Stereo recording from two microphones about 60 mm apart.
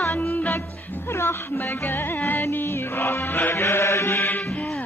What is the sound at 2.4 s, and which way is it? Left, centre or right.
Music, left.